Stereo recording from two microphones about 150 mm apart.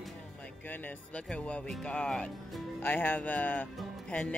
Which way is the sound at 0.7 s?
10° left (ahead or behind).